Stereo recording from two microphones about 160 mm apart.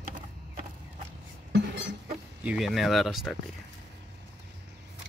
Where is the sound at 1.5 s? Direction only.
90° right.